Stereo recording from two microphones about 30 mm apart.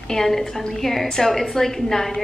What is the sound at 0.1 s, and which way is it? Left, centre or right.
A woman's voice, centre.